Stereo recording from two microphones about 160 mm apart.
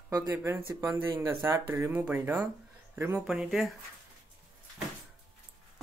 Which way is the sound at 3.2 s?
5° right (ahead or behind).